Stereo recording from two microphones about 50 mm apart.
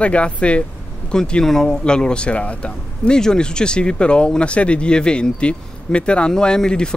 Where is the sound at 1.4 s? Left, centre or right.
Centre.